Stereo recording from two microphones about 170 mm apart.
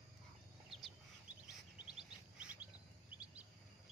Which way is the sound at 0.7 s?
Centre (ahead or behind).